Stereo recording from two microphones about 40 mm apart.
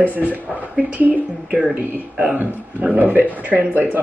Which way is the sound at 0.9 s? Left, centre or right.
Right.